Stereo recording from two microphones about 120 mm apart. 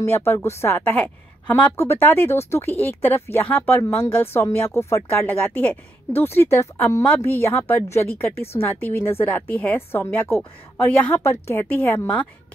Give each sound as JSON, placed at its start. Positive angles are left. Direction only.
{"t": 0.0, "sound": "a woman's voice", "side_deg": 20}